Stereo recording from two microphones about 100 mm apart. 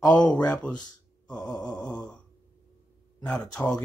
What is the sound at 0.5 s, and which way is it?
Speech, 10° left (ahead or behind).